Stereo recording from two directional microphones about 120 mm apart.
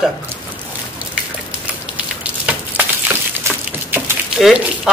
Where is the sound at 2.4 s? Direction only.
15° right (ahead or behind).